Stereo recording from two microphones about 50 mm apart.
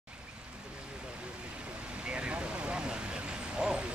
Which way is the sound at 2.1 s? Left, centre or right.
Right.